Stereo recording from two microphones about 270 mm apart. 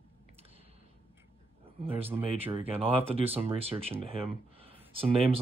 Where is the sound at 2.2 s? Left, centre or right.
Right.